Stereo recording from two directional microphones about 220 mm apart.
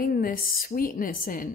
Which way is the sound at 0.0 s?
40° left (ahead or behind).